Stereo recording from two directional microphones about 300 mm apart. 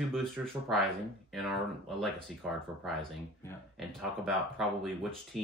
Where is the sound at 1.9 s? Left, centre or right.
Centre.